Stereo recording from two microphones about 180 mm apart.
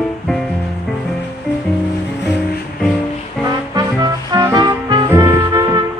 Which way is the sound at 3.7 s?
20° right (ahead or behind).